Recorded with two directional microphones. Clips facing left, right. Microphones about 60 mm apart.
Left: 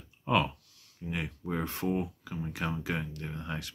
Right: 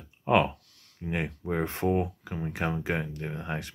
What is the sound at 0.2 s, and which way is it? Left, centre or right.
Speech, right.